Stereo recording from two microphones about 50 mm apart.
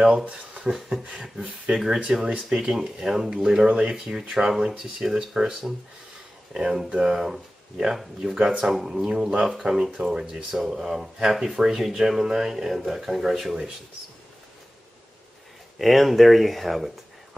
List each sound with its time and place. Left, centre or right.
0.2 s speech: right
0.7 s speech: centre
4.0 s speech: centre
15.8 s speech: centre